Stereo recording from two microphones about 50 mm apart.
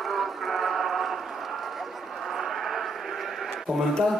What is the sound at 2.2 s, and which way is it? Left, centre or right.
Vehicle, centre.